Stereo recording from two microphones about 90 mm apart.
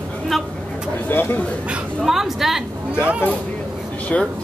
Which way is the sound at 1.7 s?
5° right (ahead or behind).